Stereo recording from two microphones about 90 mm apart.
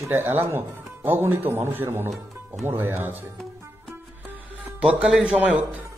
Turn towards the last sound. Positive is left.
turn(degrees=-15)  # may be behind; listen again after turning